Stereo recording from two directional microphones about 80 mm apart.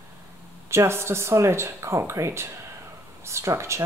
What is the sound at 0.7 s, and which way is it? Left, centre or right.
Speech, right.